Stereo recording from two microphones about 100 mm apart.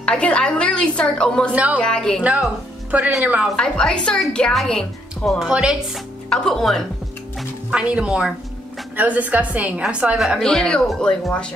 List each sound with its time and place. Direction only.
0.0 s a woman's voice: 10° left (ahead or behind)
1.5 s a woman's voice: 15° right (ahead or behind)
1.8 s a woman's voice: 10° left (ahead or behind)
2.9 s a woman's voice: 15° right (ahead or behind)
3.5 s a woman's voice: 5° left (ahead or behind)
5.4 s a woman's voice: 10° right (ahead or behind)
6.3 s speech: 5° left (ahead or behind)
7.3 s a woman's voice: 10° right (ahead or behind); by 11.5 s 10° left (ahead or behind)